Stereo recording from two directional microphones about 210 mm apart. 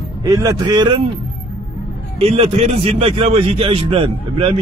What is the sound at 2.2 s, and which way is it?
A man's voice, 30° right (ahead or behind).